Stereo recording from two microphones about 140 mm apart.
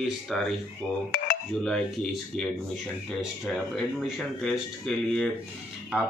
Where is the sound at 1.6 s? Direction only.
5° left (ahead or behind).